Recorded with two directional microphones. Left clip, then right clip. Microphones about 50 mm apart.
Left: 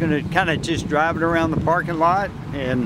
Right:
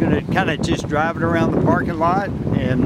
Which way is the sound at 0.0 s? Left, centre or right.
Centre.